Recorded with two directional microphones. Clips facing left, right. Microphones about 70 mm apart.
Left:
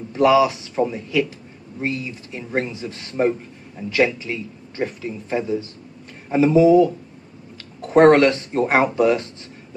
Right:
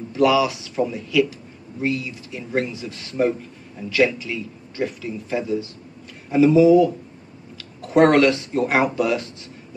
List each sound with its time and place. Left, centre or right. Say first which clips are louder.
0.1 s speech: left 2 dB; left